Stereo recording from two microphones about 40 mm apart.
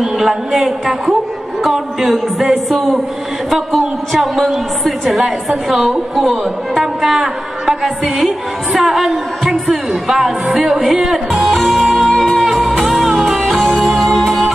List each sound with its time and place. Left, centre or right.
0.0 s a woman's voice: centre
11.4 s music: centre